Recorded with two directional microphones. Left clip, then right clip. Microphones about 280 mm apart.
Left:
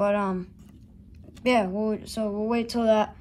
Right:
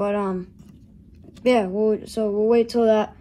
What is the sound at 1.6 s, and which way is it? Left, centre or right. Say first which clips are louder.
Speech: right 7 dB; left.